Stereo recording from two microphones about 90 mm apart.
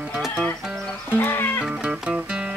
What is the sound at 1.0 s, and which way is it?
Music, 25° left (ahead or behind).